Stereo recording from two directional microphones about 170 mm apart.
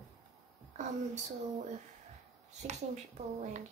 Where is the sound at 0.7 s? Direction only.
45° right (ahead or behind).